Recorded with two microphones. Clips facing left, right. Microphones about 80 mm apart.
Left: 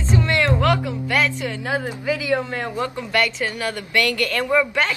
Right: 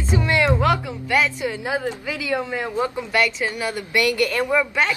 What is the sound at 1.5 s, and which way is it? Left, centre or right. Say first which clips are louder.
A woman's voice: even; centre.